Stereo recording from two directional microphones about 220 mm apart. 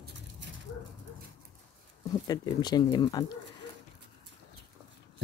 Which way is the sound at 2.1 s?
20° left (ahead or behind).